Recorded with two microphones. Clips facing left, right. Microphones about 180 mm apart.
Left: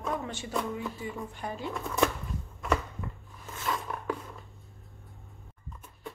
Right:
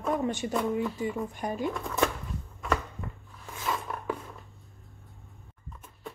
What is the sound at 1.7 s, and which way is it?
Speech, centre (ahead or behind).